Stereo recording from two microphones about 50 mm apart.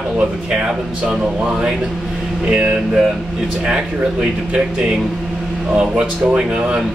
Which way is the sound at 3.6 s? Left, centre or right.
Centre.